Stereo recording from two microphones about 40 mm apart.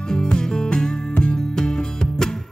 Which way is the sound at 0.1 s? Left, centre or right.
Centre.